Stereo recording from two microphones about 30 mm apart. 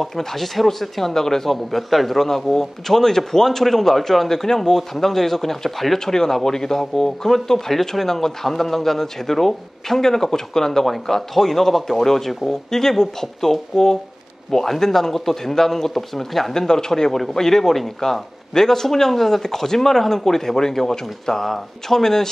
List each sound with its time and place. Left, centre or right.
0.0 s speech: centre
1.5 s speech: centre
6.4 s speech: centre
16.5 s speech: centre